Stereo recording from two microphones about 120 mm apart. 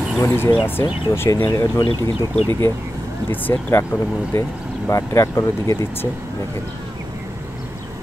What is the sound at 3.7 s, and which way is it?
Speech, 20° left (ahead or behind).